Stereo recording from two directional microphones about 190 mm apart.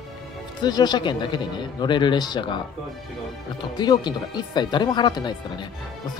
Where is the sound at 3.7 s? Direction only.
20° left (ahead or behind).